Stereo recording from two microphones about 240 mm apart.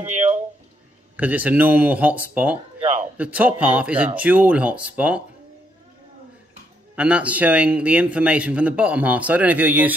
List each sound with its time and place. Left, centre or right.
0.0 s a sound: right
1.1 s a man's voice: centre
7.0 s a man's voice: centre